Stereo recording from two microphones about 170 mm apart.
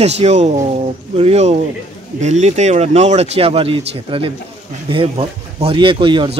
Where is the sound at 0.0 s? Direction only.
40° right (ahead or behind).